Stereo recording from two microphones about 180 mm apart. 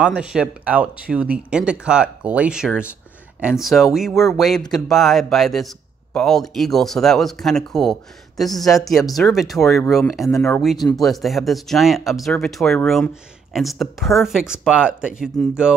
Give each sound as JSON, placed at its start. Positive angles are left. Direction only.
{"t": 0.0, "sound": "speech", "side_deg": -5}